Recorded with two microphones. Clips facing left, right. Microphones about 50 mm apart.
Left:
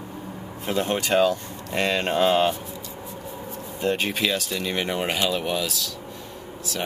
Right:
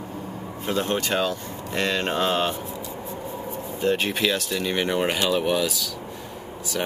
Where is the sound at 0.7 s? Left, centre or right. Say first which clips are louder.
Left 1 dB; centre.